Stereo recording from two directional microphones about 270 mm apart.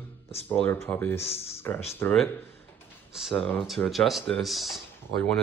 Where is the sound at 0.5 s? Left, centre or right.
Centre.